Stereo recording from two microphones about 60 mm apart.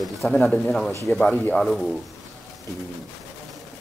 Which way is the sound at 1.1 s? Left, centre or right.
Left.